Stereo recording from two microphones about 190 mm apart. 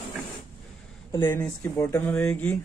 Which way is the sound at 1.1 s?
15° left (ahead or behind).